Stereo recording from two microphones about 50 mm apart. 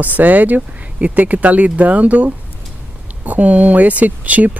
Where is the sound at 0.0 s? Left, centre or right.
Right.